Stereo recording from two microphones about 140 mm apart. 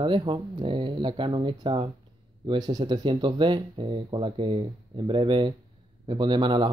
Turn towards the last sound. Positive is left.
turn(degrees=-35)  # may be behind; listen again after turning